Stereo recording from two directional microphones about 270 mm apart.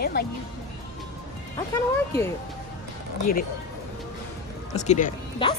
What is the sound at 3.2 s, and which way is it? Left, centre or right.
Speech, left.